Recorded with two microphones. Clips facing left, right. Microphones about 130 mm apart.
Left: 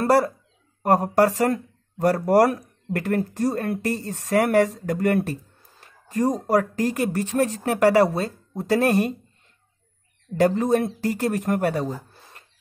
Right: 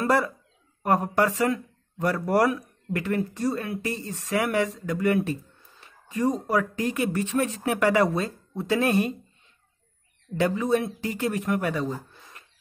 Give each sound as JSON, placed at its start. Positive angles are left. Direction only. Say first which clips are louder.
{"t": 0.0, "sound": "speech", "louder": "left 4 dB", "side_deg": 40}
{"t": 10.3, "sound": "speech", "louder": "left 4 dB", "side_deg": 45}